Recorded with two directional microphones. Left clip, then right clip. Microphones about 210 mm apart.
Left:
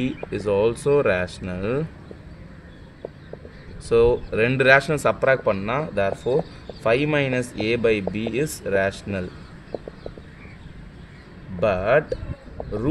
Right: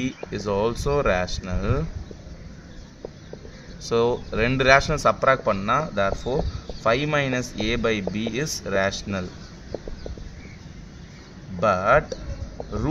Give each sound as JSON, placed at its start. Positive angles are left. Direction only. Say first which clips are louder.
{"t": 0.3, "sound": "speech", "louder": "left 4 dB", "side_deg": 25}
{"t": 3.9, "sound": "speech", "louder": "left 4 dB", "side_deg": 25}
{"t": 11.6, "sound": "speech", "louder": "even", "side_deg": 25}